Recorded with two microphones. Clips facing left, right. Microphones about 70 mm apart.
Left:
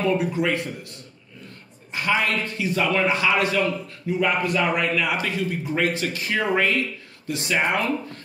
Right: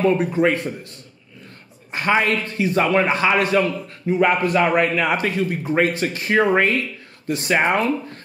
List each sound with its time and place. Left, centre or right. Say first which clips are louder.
0.0 s a man's voice: right 5 dB; right
1.9 s a man's voice: right 4 dB; right